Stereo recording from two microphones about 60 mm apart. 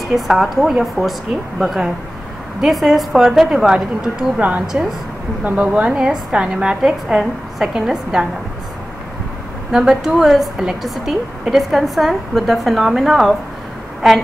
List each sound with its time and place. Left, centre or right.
0.1 s a woman's voice: centre
4.4 s a woman's voice: right
9.7 s a woman's voice: centre